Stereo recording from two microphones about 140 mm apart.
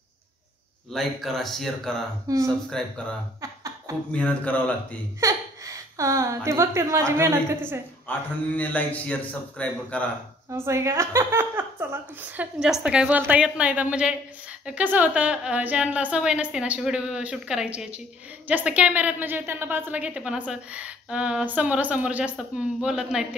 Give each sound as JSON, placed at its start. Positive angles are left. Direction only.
{"t": 0.9, "sound": "speech", "side_deg": 0}
{"t": 3.3, "sound": "a sound", "side_deg": -25}
{"t": 4.1, "sound": "a man's voice", "side_deg": 10}
{"t": 5.2, "sound": "speech", "side_deg": -20}
{"t": 8.1, "sound": "a man's voice", "side_deg": 10}
{"t": 10.5, "sound": "a woman's voice", "side_deg": -20}
{"t": 12.5, "sound": "a woman's voice", "side_deg": -5}